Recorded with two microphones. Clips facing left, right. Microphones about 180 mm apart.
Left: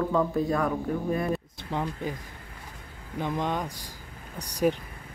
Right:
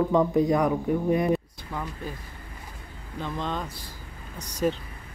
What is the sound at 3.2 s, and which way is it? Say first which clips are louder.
Speech: left 2 dB; 15° left (ahead or behind).